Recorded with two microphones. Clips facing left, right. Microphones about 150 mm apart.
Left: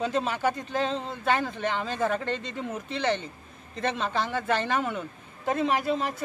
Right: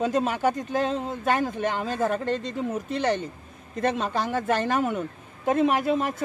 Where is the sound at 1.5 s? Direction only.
45° right (ahead or behind).